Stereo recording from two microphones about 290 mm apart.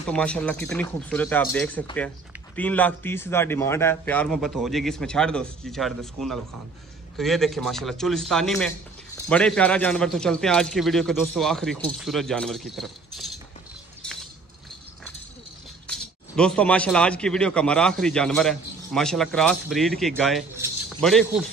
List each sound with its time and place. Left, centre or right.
0.1 s speech: centre
15.9 s speech: centre